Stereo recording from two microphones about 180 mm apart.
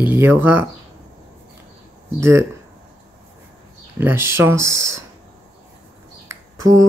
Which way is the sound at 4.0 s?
10° right (ahead or behind).